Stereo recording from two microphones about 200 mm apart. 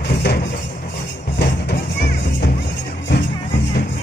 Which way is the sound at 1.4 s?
55° left (ahead or behind).